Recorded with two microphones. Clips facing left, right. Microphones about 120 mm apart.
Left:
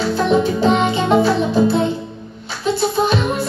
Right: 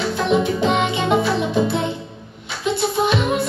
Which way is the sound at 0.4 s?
30° left (ahead or behind).